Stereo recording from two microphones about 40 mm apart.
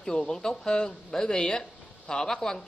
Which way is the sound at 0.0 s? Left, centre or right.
Centre.